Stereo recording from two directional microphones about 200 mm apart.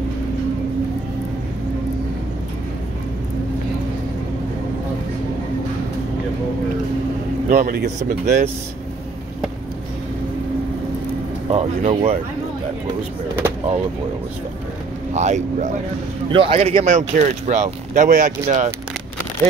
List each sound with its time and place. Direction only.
7.4 s speech: 40° right (ahead or behind)
11.5 s speech: 30° right (ahead or behind)
15.1 s a man's voice: 35° right (ahead or behind)
16.8 s speech: 40° right (ahead or behind)